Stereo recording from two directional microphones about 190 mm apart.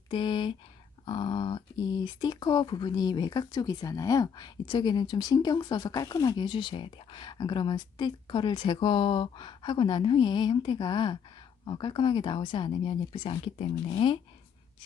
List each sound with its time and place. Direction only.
0.1 s speech: 25° left (ahead or behind)